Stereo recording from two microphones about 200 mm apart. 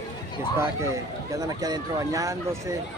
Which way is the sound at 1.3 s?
15° right (ahead or behind).